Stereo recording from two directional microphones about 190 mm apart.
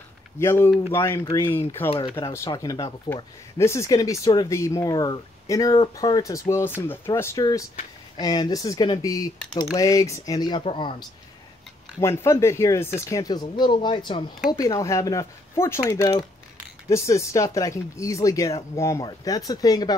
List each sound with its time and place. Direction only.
0.4 s speech: 15° left (ahead or behind)
12.0 s speech: 15° left (ahead or behind)